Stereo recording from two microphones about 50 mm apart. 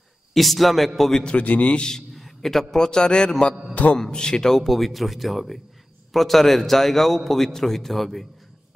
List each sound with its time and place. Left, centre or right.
0.3 s a man's voice: centre
1.2 s a man's voice: left
2.1 s a sound: centre
2.7 s a man's voice: centre